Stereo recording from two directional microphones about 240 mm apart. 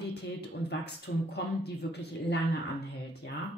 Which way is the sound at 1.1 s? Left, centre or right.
Left.